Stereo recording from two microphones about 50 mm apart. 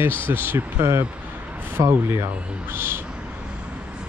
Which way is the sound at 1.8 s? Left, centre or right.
Right.